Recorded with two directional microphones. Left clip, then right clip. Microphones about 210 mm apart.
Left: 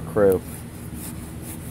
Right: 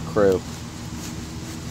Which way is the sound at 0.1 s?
10° left (ahead or behind).